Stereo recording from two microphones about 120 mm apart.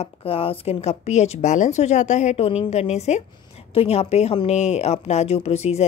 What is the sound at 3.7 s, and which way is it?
Speech, 55° left (ahead or behind).